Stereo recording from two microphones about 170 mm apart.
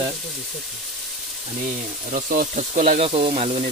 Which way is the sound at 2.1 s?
55° right (ahead or behind).